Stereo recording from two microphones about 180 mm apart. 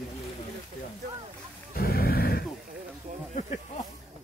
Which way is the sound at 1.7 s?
55° left (ahead or behind).